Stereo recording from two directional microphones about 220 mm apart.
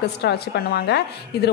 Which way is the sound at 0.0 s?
50° left (ahead or behind).